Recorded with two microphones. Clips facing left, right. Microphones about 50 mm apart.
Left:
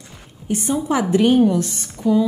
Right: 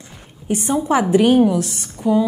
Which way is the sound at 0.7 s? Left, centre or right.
Centre.